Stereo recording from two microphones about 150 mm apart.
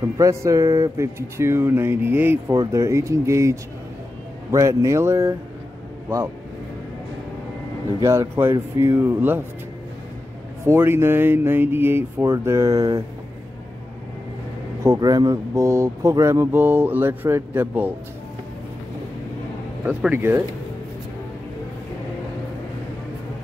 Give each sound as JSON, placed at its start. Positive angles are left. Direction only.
{"t": 0.2, "sound": "speech", "side_deg": -20}
{"t": 8.0, "sound": "speech", "side_deg": -20}
{"t": 10.6, "sound": "speech", "side_deg": -15}
{"t": 14.8, "sound": "speech", "side_deg": -25}
{"t": 19.8, "sound": "speech", "side_deg": -10}